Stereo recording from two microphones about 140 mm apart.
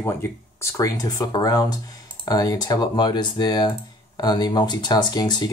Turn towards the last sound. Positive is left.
turn(degrees=30)  # may be behind; listen again after turning